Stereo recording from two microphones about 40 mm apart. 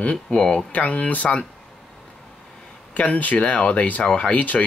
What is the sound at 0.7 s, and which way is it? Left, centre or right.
Speech, left.